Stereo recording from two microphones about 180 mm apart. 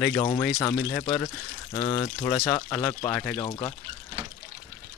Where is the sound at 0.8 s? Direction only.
15° left (ahead or behind).